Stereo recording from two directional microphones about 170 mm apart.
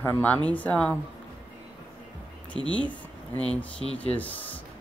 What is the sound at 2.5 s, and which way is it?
Speech, 30° right (ahead or behind).